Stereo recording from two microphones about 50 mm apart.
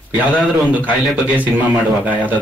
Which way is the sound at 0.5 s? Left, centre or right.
Right.